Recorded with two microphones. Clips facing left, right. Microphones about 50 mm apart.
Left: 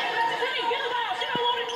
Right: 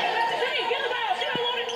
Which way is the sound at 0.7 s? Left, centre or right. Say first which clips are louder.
Right 1 dB; right.